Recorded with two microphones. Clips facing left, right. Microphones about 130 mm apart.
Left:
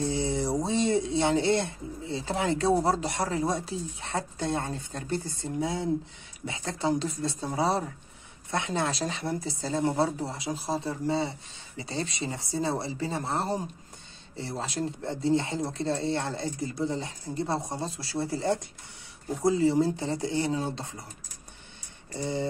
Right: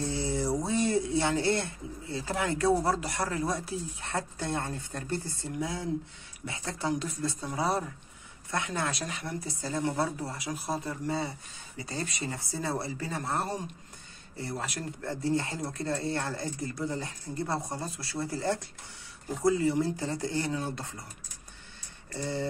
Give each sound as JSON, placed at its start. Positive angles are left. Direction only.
{"t": 0.0, "sound": "speech", "side_deg": 20}
{"t": 22.1, "sound": "speech", "side_deg": 20}